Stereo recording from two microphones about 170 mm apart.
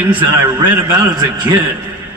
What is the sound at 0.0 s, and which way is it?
Speech, 10° right (ahead or behind).